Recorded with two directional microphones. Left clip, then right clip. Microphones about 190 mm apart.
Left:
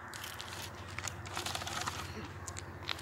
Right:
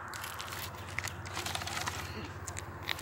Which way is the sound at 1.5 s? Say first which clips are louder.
Right 2 dB; centre (ahead or behind).